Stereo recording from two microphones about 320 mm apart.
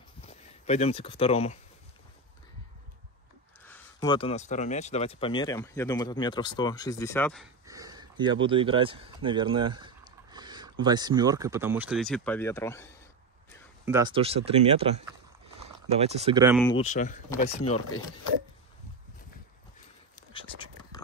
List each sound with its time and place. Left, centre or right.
0.2 s speech: centre
3.6 s speech: centre
7.6 s speech: centre
13.8 s speech: centre
16.6 s speech: centre